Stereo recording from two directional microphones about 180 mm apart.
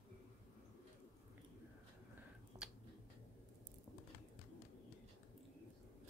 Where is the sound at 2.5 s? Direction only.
20° right (ahead or behind).